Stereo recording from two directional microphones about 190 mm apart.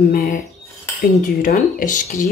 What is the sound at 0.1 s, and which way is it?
Speech, 45° left (ahead or behind).